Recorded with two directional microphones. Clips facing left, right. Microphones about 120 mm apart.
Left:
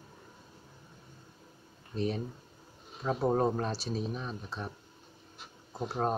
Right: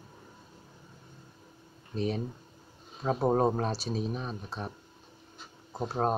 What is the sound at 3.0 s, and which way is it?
Speech, 20° right (ahead or behind).